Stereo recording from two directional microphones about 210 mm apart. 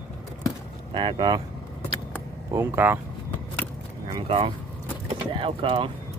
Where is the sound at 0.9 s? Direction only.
25° right (ahead or behind).